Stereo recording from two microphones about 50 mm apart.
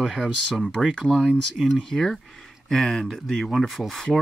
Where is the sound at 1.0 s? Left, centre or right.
Centre.